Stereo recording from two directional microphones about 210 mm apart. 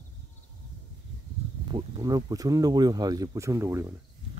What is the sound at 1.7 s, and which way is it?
Speech, 20° right (ahead or behind).